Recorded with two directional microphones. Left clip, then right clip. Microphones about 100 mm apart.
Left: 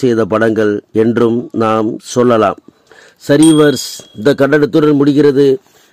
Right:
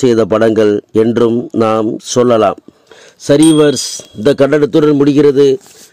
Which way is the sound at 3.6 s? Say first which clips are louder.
Even; 20° right (ahead or behind).